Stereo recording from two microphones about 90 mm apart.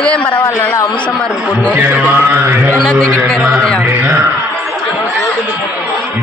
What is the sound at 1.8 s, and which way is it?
Mantra, 20° right (ahead or behind).